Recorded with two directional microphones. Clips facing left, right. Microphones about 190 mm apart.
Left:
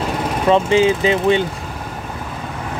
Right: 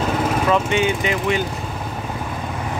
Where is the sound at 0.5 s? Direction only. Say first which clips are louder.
Left 8 dB; 30° left (ahead or behind).